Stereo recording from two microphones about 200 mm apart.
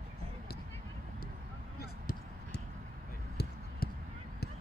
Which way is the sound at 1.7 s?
50° left (ahead or behind).